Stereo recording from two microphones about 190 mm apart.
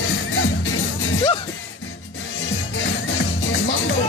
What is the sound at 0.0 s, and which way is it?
Music, 90° left.